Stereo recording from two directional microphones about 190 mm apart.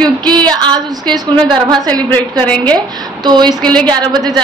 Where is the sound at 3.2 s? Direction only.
20° right (ahead or behind).